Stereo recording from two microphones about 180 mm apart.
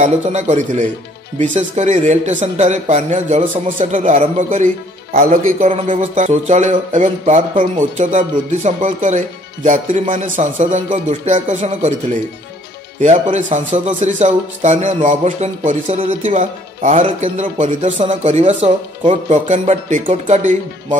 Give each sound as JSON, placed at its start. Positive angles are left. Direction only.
{"t": 0.0, "sound": "speech", "side_deg": -40}
{"t": 5.4, "sound": "speech", "side_deg": -40}
{"t": 13.0, "sound": "speech", "side_deg": -40}